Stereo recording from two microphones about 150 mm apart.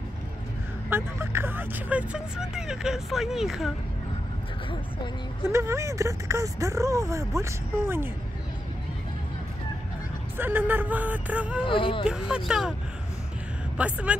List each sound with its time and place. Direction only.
0.8 s speech: 15° right (ahead or behind)
5.5 s speech: 20° right (ahead or behind)
10.3 s speech: 15° right (ahead or behind)
11.6 s speech: 35° left (ahead or behind)
12.1 s speech: 5° right (ahead or behind)
13.7 s speech: 10° right (ahead or behind)